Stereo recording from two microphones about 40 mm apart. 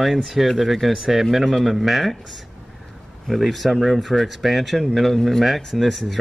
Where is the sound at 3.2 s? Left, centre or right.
Centre.